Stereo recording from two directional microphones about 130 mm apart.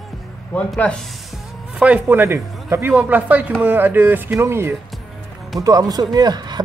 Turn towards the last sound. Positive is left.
turn(degrees=-30)  # may be behind; listen again after turning